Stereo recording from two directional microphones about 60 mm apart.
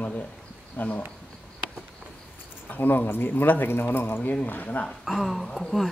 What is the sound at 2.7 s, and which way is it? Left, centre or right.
Speech, left.